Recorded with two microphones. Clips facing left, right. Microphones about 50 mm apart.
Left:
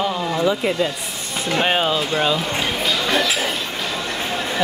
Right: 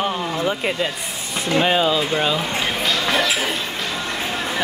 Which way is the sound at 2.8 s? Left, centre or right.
Centre.